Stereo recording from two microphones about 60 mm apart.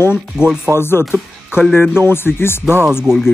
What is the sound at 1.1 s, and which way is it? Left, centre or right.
Speech, centre.